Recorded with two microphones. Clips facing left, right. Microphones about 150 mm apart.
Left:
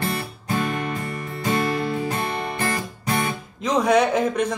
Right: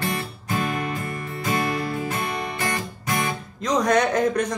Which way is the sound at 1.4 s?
30° left (ahead or behind).